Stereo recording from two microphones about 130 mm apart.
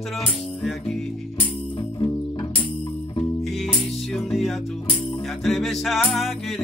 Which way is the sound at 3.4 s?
Centre (ahead or behind).